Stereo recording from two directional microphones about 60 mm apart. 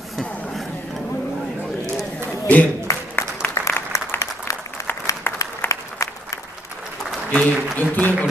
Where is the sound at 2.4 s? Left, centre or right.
Left.